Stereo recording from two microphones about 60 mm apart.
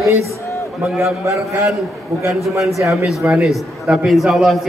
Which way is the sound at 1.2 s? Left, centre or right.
Right.